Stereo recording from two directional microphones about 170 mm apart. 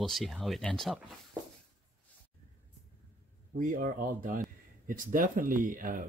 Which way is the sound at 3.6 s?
50° right (ahead or behind).